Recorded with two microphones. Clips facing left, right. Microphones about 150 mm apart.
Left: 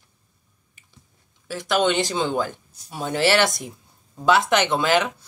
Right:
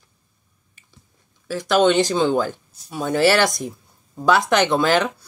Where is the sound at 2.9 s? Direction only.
25° left (ahead or behind).